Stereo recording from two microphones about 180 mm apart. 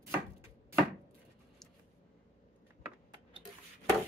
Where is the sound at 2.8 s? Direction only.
25° right (ahead or behind).